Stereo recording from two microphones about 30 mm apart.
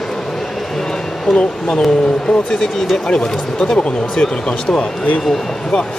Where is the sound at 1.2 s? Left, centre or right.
Left.